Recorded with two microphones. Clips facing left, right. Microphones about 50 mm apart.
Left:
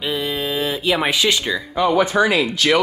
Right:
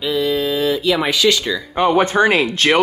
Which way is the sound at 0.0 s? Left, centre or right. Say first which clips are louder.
Right 5 dB; centre.